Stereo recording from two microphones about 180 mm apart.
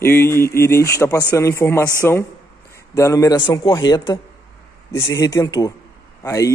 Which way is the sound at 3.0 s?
15° left (ahead or behind).